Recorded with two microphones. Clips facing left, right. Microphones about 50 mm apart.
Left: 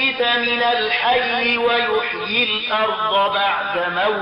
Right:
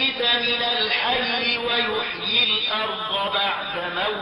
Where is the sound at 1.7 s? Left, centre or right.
Centre.